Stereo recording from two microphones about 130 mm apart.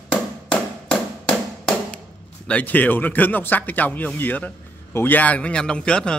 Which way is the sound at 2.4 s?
10° left (ahead or behind).